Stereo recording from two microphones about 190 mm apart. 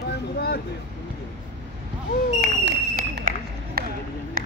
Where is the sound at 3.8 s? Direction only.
55° right (ahead or behind).